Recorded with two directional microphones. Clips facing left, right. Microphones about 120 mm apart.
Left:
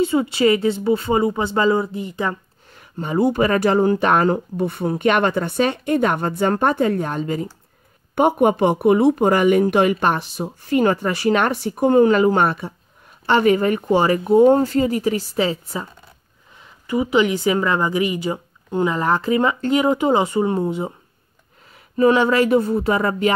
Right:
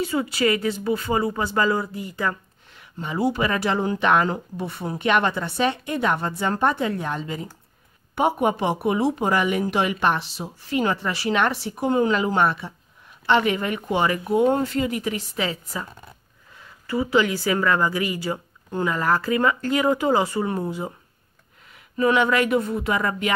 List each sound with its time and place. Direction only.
0.0 s speech: 25° left (ahead or behind)
2.7 s speech: 45° left (ahead or behind); by 15.9 s 30° left (ahead or behind)
16.8 s speech: 15° left (ahead or behind)
21.9 s speech: 35° left (ahead or behind)